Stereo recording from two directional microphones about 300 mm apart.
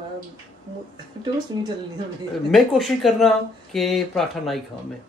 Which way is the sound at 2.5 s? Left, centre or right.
Centre.